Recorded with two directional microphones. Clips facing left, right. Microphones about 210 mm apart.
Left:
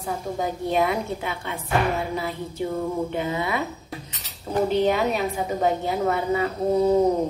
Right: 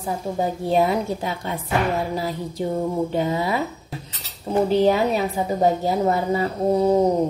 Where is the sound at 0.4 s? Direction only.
30° right (ahead or behind).